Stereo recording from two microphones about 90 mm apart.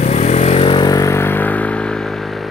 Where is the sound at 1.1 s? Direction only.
25° left (ahead or behind); by 2.4 s 5° left (ahead or behind).